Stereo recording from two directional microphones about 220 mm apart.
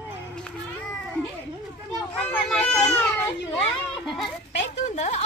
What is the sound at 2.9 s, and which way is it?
Baby cry, 10° left (ahead or behind).